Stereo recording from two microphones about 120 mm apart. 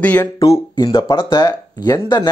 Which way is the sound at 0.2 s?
25° left (ahead or behind).